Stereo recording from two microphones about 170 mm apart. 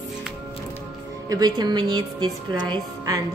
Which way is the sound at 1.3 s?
25° right (ahead or behind).